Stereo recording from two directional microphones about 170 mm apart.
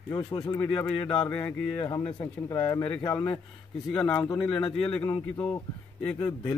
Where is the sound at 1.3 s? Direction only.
10° left (ahead or behind).